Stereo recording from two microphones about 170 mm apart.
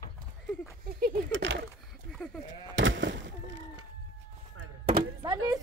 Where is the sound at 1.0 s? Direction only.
75° right (ahead or behind).